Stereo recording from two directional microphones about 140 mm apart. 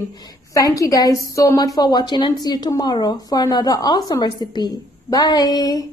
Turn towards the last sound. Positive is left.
turn(degrees=30)  # may be behind; listen again after turning